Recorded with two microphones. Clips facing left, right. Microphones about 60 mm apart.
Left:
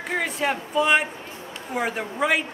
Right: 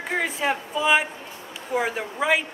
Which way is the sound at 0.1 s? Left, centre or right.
Centre.